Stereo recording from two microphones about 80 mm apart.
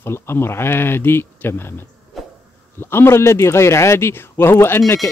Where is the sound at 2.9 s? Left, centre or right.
Left.